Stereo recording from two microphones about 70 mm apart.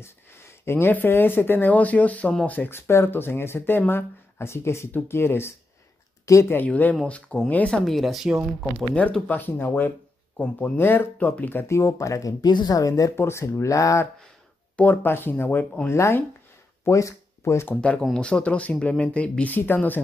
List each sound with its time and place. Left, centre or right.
0.0 s speech: left
2.9 s speech: left
6.5 s speech: left
7.8 s speech: centre
9.3 s speech: left
10.3 s speech: centre
10.8 s speech: left
11.6 s speech: left
13.1 s speech: left
13.6 s speech: left
15.0 s speech: left
15.9 s speech: left
17.7 s speech: centre